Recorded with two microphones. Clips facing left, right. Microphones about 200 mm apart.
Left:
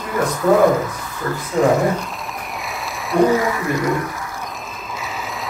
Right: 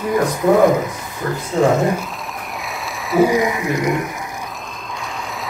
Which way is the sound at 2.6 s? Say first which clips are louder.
Even; centre (ahead or behind).